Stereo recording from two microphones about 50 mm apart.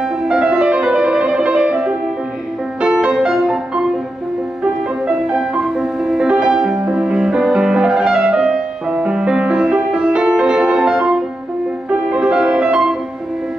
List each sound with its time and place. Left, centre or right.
0.0 s music: centre
5.0 s music: centre
10.8 s music: centre